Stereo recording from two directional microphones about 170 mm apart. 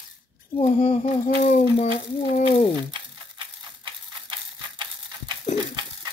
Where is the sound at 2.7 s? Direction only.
30° right (ahead or behind).